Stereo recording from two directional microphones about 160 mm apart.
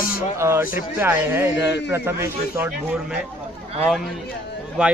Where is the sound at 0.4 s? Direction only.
15° right (ahead or behind).